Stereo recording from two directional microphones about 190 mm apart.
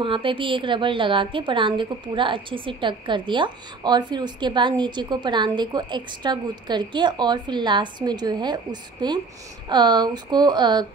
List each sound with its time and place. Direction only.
0.0 s a woman's voice: 25° right (ahead or behind)